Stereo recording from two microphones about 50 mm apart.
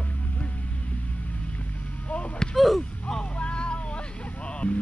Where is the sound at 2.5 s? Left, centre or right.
Centre.